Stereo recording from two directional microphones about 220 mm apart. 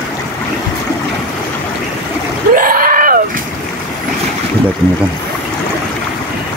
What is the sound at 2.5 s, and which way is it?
Screaming, 40° right (ahead or behind).